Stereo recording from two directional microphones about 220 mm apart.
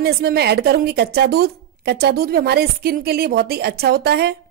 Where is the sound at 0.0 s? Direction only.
45° right (ahead or behind).